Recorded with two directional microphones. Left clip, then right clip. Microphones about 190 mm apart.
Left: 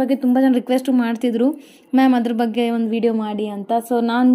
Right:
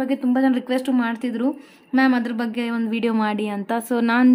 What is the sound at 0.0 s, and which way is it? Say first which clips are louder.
Speech: left 4 dB; 20° left (ahead or behind).